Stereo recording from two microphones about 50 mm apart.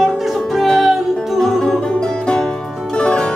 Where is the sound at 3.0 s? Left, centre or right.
Left.